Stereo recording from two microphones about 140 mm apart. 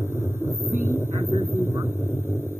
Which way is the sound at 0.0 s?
15° right (ahead or behind).